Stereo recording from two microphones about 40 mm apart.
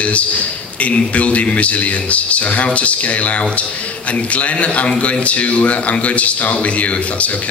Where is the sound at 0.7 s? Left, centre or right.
Left.